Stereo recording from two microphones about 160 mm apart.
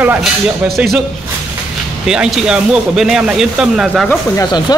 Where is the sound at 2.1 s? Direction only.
5° right (ahead or behind).